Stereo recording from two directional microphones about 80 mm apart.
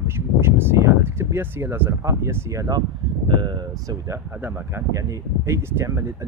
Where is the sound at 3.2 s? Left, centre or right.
Right.